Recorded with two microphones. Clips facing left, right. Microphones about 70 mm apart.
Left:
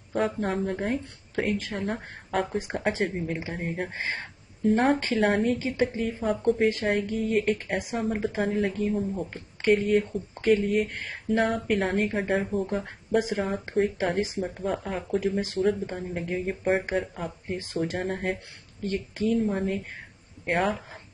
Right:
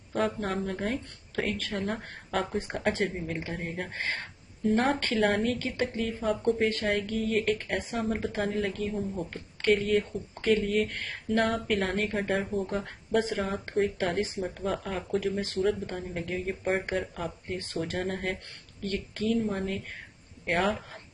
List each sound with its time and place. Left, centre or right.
0.1 s speech: centre
5.0 s a woman's voice: centre